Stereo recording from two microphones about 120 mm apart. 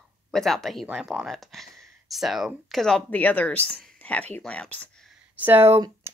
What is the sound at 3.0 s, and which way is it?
Speech, 15° left (ahead or behind).